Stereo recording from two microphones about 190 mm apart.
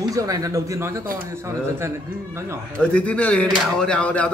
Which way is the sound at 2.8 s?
5° left (ahead or behind).